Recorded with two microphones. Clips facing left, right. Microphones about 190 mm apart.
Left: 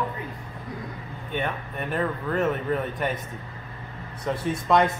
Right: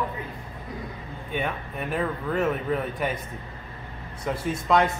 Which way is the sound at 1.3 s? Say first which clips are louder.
Even; 5° right (ahead or behind).